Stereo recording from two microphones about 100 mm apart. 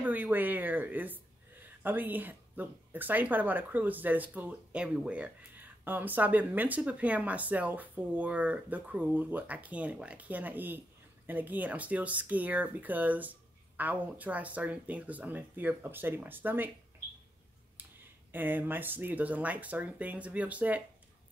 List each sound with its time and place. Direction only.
0.0 s speech: 15° right (ahead or behind)
17.8 s a sound: 20° right (ahead or behind)
18.3 s speech: 20° right (ahead or behind)